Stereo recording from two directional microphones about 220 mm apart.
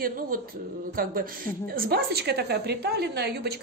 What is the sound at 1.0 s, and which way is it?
A man's voice, 40° right (ahead or behind).